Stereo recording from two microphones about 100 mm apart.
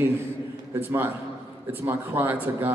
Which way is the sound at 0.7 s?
20° right (ahead or behind).